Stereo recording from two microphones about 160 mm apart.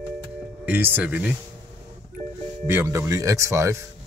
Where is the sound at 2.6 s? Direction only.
15° right (ahead or behind).